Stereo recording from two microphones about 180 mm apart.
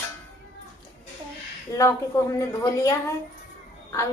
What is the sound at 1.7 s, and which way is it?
A woman's voice, 15° left (ahead or behind).